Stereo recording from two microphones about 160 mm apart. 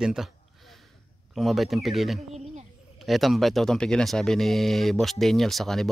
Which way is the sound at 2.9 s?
Centre (ahead or behind).